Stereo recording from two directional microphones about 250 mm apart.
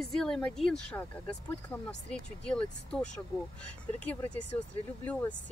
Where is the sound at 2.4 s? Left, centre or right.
Centre.